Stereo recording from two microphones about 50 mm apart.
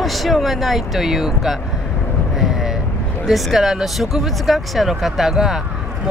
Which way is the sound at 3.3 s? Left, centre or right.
Centre.